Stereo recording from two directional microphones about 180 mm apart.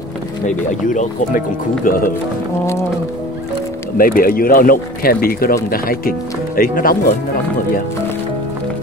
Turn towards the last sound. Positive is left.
turn(degrees=55)  # may be behind; listen again after turning